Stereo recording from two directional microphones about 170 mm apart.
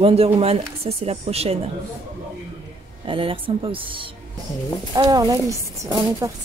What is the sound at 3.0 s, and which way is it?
Speech, 30° right (ahead or behind).